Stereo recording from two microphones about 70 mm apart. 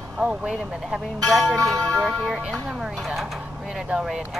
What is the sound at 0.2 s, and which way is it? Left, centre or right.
Speech, centre.